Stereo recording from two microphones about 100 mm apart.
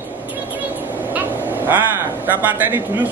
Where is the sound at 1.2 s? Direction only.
20° right (ahead or behind).